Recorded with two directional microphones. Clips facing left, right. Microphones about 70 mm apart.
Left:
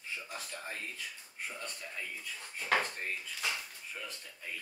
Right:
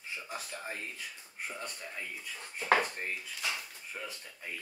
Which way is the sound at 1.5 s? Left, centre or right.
Centre.